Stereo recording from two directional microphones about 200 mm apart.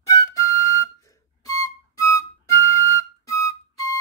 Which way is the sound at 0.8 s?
15° left (ahead or behind).